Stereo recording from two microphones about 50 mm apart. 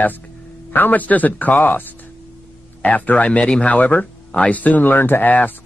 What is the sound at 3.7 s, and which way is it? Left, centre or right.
Speech, left.